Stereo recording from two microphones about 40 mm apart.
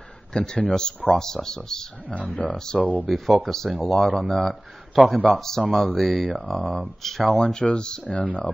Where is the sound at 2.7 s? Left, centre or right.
Centre.